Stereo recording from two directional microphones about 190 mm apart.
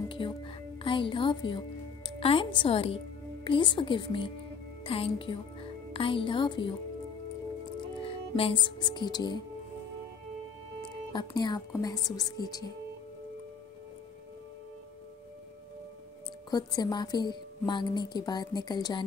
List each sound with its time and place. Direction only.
0.1 s music: 25° left (ahead or behind)
2.0 s a woman's voice: 30° left (ahead or behind)
8.0 s speech: 30° left (ahead or behind)
11.1 s speech: 20° left (ahead or behind)
16.4 s speech: 20° left (ahead or behind)